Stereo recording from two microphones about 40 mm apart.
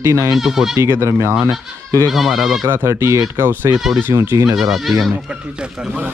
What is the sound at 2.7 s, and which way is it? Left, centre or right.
Speech, right.